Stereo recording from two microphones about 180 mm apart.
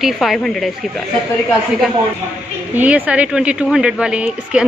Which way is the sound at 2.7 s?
10° right (ahead or behind).